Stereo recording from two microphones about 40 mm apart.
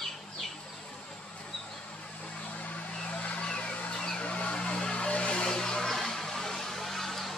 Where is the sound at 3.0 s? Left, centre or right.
Left.